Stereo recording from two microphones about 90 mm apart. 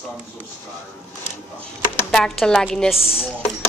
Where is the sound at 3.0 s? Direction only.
90° left.